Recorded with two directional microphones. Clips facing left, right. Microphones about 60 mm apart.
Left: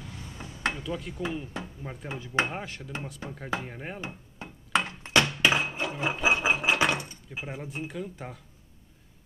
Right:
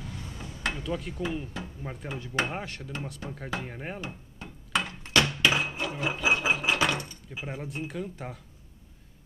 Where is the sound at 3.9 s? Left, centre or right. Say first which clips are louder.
Even; left.